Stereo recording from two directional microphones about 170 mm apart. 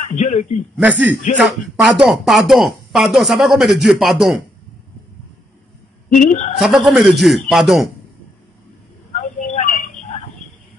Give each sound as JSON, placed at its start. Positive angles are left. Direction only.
{"t": 0.0, "sound": "a man's voice", "side_deg": 45}
{"t": 0.7, "sound": "a man's voice", "side_deg": -10}
{"t": 6.0, "sound": "speech", "side_deg": 50}
{"t": 6.6, "sound": "speech", "side_deg": 0}
{"t": 9.1, "sound": "a sound", "side_deg": 45}